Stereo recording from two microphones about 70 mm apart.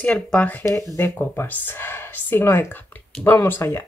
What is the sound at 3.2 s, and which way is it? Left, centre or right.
Speech, centre.